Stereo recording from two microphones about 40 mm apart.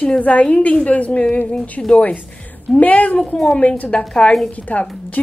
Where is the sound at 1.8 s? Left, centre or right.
Centre.